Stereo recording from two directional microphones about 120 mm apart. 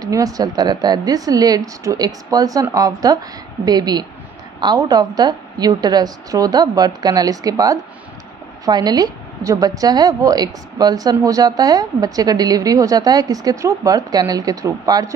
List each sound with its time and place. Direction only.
0.0 s a woman's voice: 30° right (ahead or behind)